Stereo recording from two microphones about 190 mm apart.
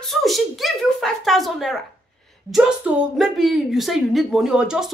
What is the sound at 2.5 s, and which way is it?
A woman's voice, 5° right (ahead or behind).